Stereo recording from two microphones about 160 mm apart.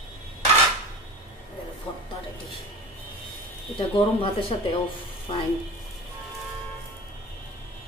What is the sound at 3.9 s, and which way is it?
Speech, 35° left (ahead or behind).